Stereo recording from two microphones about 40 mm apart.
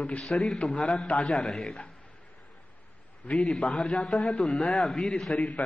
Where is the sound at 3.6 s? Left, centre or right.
Left.